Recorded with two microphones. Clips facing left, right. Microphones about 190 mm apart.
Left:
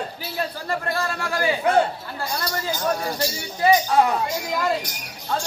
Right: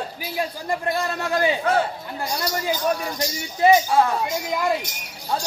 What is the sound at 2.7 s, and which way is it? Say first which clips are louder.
Speech: even; 35° left (ahead or behind).